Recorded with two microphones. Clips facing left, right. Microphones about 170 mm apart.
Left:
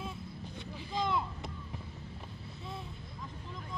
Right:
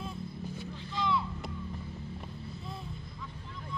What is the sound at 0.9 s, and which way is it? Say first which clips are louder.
Vehicle: right 1 dB; 45° left (ahead or behind).